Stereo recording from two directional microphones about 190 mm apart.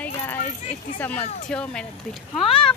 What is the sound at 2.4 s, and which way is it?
Speech, 30° left (ahead or behind).